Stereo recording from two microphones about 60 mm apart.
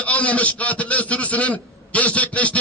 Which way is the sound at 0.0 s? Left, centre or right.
Left.